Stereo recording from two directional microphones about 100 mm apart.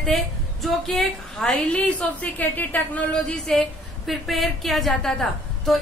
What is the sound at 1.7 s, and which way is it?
A man's voice, 15° left (ahead or behind).